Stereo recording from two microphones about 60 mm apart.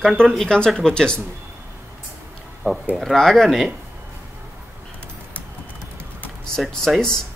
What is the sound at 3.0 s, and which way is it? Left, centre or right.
Speech, centre.